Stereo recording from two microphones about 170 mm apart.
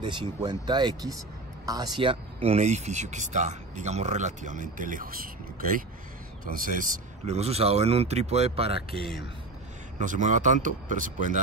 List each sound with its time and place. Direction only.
0.0 s a man's voice: 25° right (ahead or behind); by 7.3 s 55° right (ahead or behind)
7.3 s speech: 35° right (ahead or behind)
9.9 s speech: 45° right (ahead or behind)